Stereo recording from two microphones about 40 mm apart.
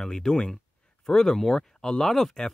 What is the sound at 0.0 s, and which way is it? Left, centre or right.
Speech, centre.